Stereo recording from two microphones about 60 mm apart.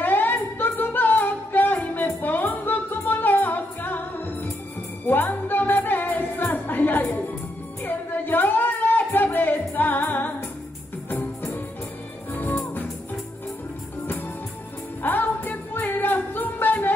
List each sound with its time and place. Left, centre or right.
0.0 s music: left
15.0 s music: left